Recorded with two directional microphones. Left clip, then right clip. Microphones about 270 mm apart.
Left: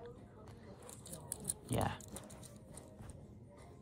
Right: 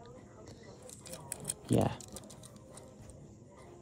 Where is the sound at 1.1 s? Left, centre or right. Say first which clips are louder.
Right 5 dB; centre.